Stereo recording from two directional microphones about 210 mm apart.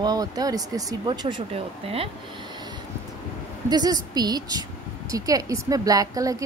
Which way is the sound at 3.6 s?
20° right (ahead or behind).